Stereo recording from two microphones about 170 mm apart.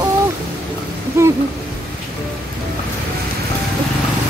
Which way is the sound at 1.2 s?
15° right (ahead or behind).